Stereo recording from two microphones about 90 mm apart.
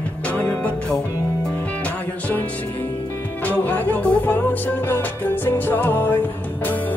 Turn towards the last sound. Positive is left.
turn(degrees=20)  # may be behind; listen again after turning